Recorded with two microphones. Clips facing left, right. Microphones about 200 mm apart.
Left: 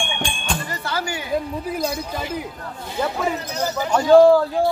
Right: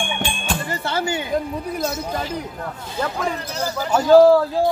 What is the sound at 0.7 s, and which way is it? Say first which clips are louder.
Music: right 3 dB; 25° right (ahead or behind).